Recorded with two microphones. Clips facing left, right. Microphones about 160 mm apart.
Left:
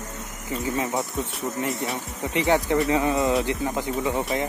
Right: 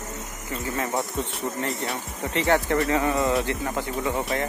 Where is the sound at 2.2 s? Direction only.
15° left (ahead or behind).